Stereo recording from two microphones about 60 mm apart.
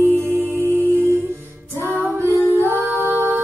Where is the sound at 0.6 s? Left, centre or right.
Right.